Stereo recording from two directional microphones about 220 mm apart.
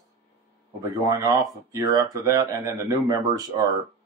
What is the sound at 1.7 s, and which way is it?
Speech, 15° right (ahead or behind).